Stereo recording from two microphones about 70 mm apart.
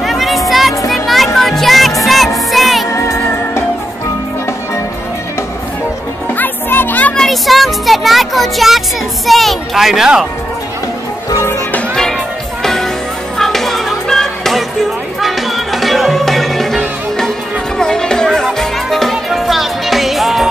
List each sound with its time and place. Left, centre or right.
0.0 s music: centre
2.9 s music: left
6.3 s music: left
7.2 s music: centre
11.9 s music: centre